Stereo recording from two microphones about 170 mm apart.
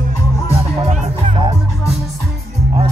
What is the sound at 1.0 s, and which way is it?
Music, 35° right (ahead or behind).